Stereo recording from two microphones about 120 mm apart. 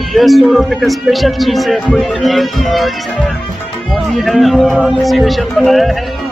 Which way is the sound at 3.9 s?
Centre (ahead or behind).